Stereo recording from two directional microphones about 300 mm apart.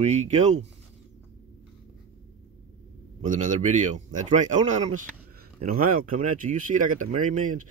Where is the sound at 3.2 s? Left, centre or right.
Right.